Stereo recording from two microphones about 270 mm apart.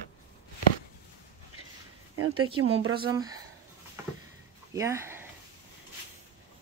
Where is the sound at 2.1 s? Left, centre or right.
Right.